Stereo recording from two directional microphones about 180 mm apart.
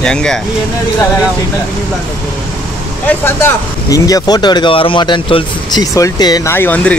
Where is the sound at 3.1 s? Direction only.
10° left (ahead or behind).